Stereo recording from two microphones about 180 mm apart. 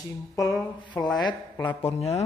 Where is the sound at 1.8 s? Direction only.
35° left (ahead or behind).